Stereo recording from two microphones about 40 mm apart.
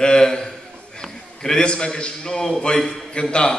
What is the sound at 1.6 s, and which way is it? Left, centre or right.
A man's voice, left.